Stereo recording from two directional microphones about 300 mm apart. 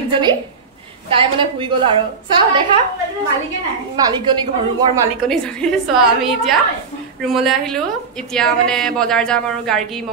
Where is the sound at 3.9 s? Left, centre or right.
Centre.